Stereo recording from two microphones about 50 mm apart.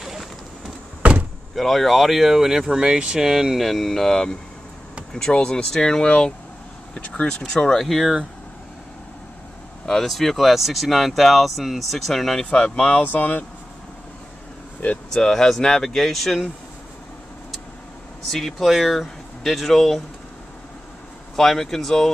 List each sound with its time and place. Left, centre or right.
0.0 s a sound: centre
1.5 s speech: centre
9.8 s speech: centre
12.4 s speech: left
13.0 s speech: left
14.8 s speech: left
15.2 s speech: centre
18.3 s speech: centre
21.4 s speech: centre